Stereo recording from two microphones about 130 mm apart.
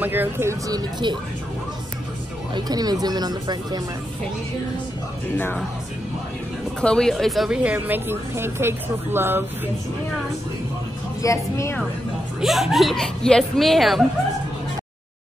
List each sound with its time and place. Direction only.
0.0 s speech: 15° right (ahead or behind); by 1.1 s 30° right (ahead or behind)
2.5 s speech: 30° right (ahead or behind)
5.3 s speech: 15° left (ahead or behind)
6.8 s a woman's voice: 5° left (ahead or behind); by 9.4 s 15° right (ahead or behind)
11.2 s speech: 20° left (ahead or behind)
12.4 s speech: 5° right (ahead or behind)